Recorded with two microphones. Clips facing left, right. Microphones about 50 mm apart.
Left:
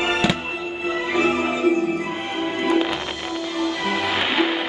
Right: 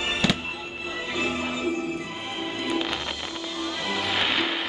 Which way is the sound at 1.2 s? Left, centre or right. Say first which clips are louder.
Left 8 dB; left.